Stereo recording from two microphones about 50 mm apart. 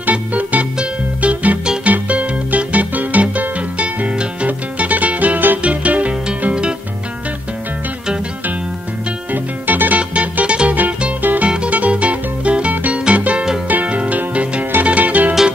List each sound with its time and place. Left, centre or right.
0.0 s music: right
9.3 s music: right